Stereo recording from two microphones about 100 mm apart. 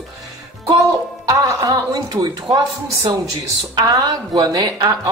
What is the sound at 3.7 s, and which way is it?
Speech, 40° right (ahead or behind).